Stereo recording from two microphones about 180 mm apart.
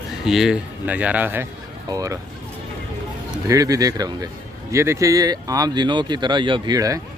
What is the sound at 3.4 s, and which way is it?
Speech, 20° right (ahead or behind).